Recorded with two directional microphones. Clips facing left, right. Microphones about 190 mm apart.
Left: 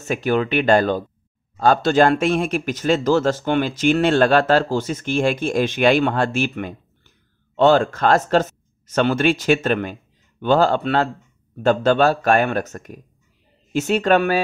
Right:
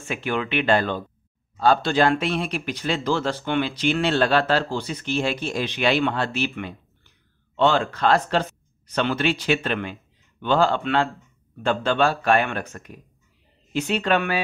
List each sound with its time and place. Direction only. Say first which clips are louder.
0.0 s speech: left 6 dB; 40° left (ahead or behind)